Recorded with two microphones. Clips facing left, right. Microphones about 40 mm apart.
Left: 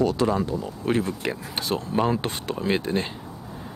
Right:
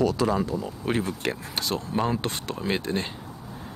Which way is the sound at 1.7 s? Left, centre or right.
Centre.